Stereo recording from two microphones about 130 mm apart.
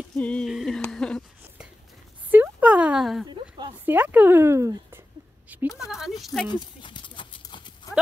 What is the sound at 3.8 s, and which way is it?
Speech, 15° right (ahead or behind).